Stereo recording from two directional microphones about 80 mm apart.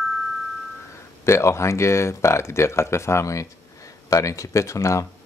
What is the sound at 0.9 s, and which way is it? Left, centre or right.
Speech, left.